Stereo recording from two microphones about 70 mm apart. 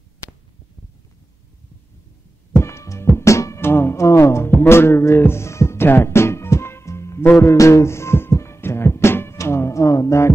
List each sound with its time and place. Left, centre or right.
2.5 s music: left